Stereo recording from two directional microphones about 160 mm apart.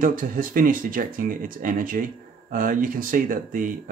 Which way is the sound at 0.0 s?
60° right (ahead or behind).